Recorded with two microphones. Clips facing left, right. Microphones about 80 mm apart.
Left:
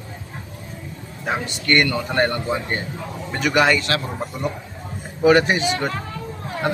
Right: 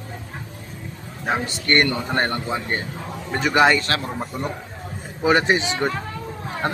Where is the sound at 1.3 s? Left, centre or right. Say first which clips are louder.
Even; right.